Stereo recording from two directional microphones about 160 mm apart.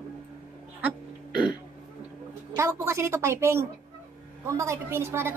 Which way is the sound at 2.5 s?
20° right (ahead or behind).